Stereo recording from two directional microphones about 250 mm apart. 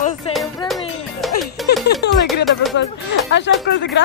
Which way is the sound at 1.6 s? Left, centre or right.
Centre.